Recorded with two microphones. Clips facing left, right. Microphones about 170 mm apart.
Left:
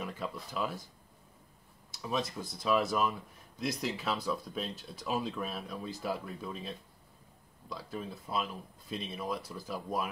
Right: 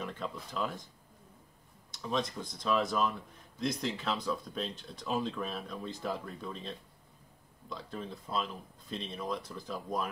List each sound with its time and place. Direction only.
0.0 s speech: 5° left (ahead or behind)
1.9 s speech: 5° left (ahead or behind)
7.7 s speech: 5° left (ahead or behind)